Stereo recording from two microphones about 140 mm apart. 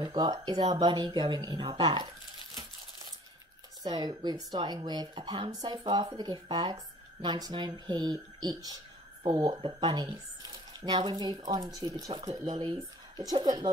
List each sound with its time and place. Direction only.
0.0 s speech: 35° right (ahead or behind)
3.8 s speech: 30° right (ahead or behind)